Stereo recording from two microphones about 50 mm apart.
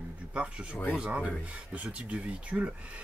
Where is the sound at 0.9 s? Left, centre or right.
Centre.